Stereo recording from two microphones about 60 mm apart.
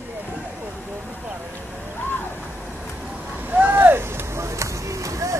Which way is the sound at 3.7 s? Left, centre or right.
Right.